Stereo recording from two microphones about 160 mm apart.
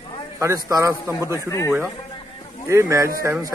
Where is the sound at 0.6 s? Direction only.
20° right (ahead or behind).